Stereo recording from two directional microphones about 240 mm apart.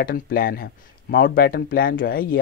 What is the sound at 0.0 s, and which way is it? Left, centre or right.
Speech, left.